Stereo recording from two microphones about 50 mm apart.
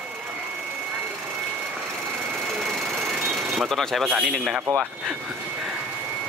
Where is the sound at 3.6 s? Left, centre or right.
Centre.